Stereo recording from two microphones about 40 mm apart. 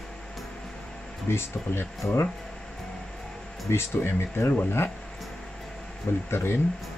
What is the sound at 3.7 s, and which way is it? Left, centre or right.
Speech, left.